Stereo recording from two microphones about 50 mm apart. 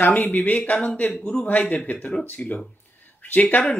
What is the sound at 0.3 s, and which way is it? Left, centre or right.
Speech, left.